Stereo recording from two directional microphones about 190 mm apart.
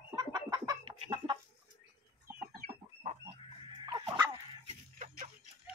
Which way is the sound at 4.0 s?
25° right (ahead or behind).